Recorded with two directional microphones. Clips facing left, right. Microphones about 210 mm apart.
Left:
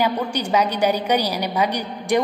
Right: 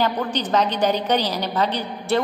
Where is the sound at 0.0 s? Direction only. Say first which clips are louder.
Left 1 dB; 10° left (ahead or behind).